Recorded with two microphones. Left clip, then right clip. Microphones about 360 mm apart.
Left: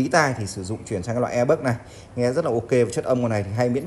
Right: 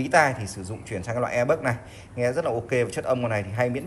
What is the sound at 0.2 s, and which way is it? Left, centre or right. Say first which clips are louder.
Speech: even; left.